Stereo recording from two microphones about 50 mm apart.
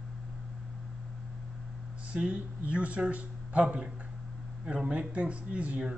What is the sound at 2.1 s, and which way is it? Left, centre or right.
Speech, right.